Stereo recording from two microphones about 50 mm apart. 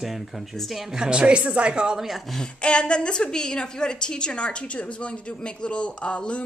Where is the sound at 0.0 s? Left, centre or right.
Centre.